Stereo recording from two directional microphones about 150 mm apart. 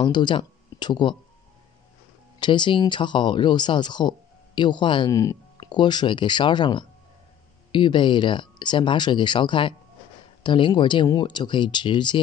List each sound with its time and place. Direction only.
0.0 s speech: 30° left (ahead or behind)
2.4 s speech: 30° left (ahead or behind)